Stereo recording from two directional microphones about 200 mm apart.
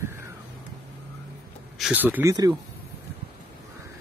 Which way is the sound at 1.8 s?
10° right (ahead or behind).